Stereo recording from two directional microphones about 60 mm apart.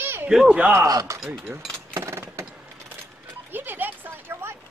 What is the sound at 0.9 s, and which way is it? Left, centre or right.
Speech, right.